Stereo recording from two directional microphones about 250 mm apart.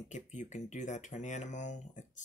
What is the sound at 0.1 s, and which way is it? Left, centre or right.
Speech, left.